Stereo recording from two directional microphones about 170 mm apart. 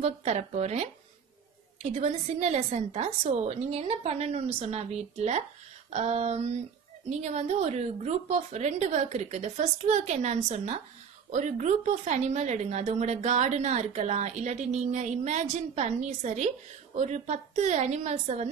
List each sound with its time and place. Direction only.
0.0 s a woman's voice: 40° right (ahead or behind)